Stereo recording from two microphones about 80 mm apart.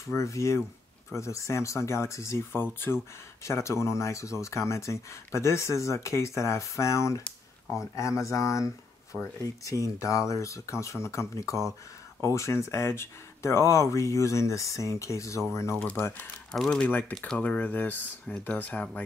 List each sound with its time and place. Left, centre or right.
0.0 s speech: left
16.5 s speech: centre
16.8 s speech: centre